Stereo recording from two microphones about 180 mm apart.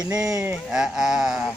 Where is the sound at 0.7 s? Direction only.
5° right (ahead or behind).